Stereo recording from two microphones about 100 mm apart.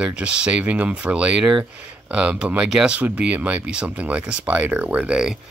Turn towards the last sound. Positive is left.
turn(degrees=-10)  # may be behind; listen again after turning